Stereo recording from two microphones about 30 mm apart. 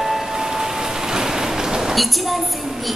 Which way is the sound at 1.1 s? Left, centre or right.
Right.